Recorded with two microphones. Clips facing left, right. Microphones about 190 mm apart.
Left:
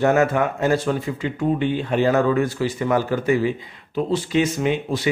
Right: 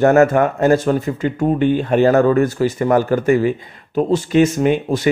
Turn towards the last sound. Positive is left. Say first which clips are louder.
# right 6 dB
turn(degrees=-45)  # may be behind; listen again after turning